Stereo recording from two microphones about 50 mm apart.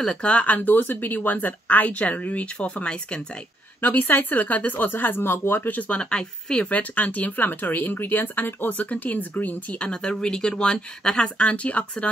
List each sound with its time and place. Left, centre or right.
0.0 s speech: left
0.6 s speech: left
3.8 s speech: left
5.7 s speech: left
5.9 s speech: centre; by 8.7 s left
8.7 s speech: left